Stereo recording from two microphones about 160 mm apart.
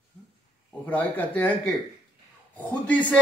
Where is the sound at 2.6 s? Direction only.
10° left (ahead or behind).